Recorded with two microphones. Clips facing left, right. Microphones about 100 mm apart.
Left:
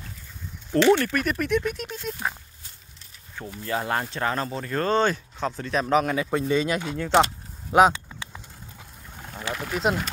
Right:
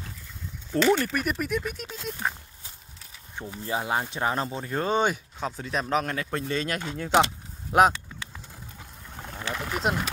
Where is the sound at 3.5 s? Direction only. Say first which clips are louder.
Left 1 dB; 15° right (ahead or behind).